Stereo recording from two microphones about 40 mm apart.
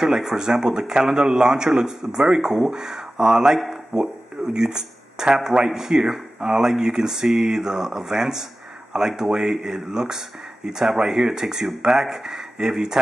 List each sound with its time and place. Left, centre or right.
0.0 s speech: centre